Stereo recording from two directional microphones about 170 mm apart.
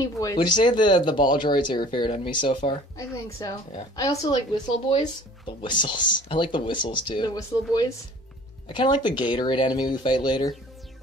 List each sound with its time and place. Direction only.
0.0 s speech: 20° left (ahead or behind)
4.8 s speech: 30° left (ahead or behind)